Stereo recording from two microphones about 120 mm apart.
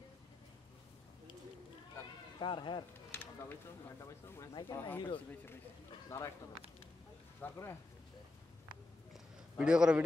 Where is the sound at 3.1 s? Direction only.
15° left (ahead or behind).